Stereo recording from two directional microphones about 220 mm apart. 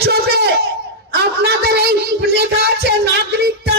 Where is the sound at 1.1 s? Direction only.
45° right (ahead or behind).